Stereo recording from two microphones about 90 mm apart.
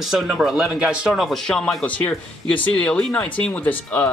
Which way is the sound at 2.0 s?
15° left (ahead or behind).